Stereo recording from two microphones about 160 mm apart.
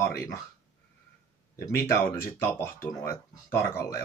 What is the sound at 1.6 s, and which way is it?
Speech, 15° left (ahead or behind).